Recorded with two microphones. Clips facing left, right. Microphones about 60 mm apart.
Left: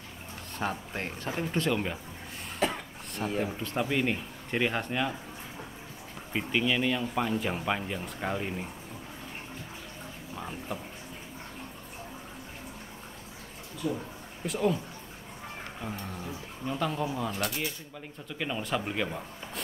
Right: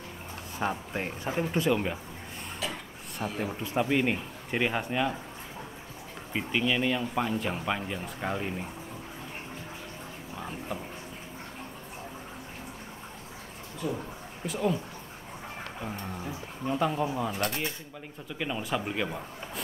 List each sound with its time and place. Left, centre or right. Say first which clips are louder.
0.6 s speech: right 2 dB; centre
2.6 s speech: left 7 dB; left
3.4 s speech: right 2 dB; centre
6.3 s speech: even; centre
10.3 s a sound: right 1 dB; centre
13.8 s speech: left 1 dB; right
14.4 s speech: left 1 dB; centre
15.8 s speech: right 1 dB; centre